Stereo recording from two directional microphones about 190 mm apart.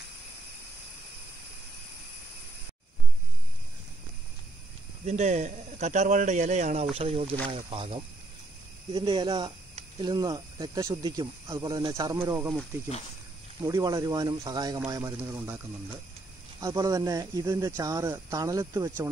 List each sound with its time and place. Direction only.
5.0 s a man's voice: 35° right (ahead or behind); by 12.5 s 15° right (ahead or behind)
13.7 s speech: 15° right (ahead or behind)